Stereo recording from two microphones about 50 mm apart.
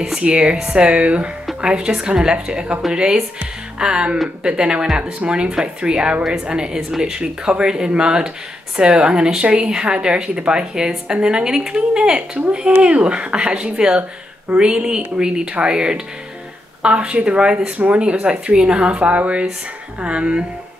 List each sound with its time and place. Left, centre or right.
0.0 s a woman's voice: centre